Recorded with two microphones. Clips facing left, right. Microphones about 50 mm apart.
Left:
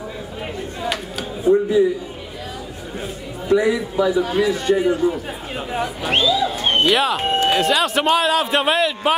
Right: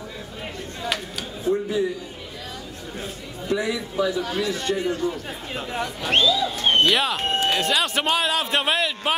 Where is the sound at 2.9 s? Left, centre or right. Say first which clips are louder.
Left 5 dB; centre.